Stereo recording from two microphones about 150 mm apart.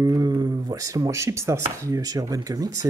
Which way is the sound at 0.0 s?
25° right (ahead or behind).